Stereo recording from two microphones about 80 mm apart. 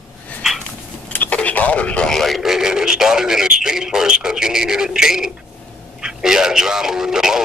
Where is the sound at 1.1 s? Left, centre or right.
Centre.